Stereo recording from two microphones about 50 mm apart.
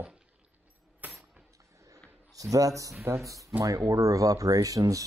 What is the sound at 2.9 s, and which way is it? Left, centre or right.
Speech, right.